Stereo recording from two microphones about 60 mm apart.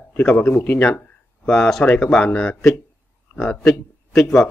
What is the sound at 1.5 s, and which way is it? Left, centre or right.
Speech, centre.